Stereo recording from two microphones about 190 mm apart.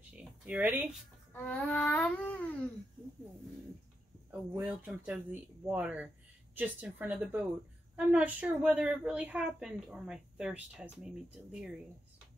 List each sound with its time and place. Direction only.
0.1 s speech: 5° right (ahead or behind)
1.3 s a sound: 10° left (ahead or behind)
4.3 s a woman's voice: 10° right (ahead or behind)